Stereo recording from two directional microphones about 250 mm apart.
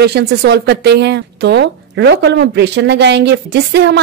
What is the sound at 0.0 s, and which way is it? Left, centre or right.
A woman's voice, right.